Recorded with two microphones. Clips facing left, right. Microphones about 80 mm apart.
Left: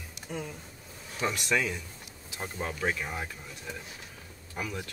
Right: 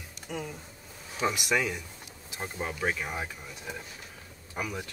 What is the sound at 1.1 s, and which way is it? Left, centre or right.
Speech, centre.